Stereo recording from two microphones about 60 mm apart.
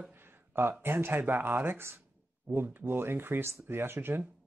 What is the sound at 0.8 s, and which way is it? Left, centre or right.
Speech, right.